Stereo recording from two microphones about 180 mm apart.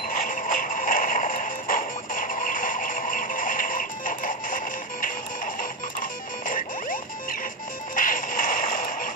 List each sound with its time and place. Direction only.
0.1 s music: 50° left (ahead or behind)